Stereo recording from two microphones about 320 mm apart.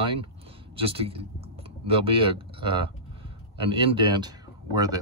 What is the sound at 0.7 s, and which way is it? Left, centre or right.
Speech, centre.